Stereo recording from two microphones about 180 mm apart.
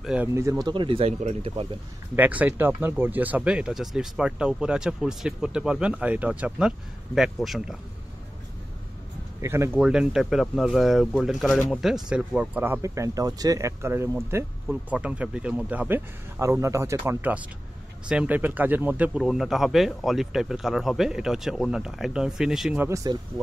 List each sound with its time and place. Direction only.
0.0 s speech: 5° right (ahead or behind)
0.3 s speech: 15° right (ahead or behind); by 1.7 s 35° right (ahead or behind)
2.1 s speech: 10° right (ahead or behind)
9.4 s speech: 15° right (ahead or behind)
22.8 s speech: 15° right (ahead or behind)